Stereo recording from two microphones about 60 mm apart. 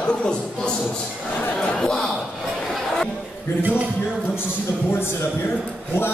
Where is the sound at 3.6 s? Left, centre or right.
Right.